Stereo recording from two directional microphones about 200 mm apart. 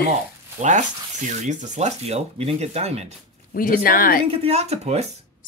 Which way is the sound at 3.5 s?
45° left (ahead or behind).